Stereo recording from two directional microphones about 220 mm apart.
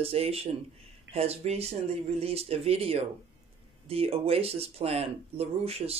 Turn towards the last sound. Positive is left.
turn(degrees=-25)  # may be behind; listen again after turning